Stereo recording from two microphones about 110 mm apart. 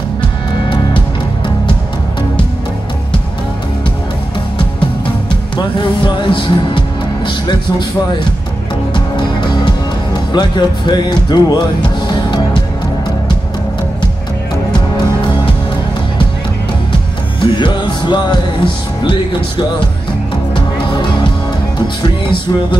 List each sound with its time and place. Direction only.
5.6 s music: 45° left (ahead or behind)
8.9 s music: 45° left (ahead or behind)
17.4 s music: 45° left (ahead or behind)
20.5 s music: 45° left (ahead or behind)